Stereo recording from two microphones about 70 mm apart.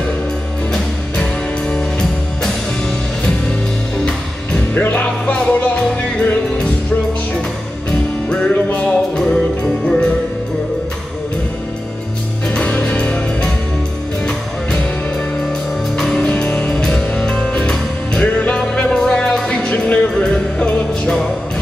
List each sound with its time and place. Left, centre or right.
1.1 s music: centre
4.7 s music: left
8.3 s music: centre
12.4 s music: centre
16.2 s music: centre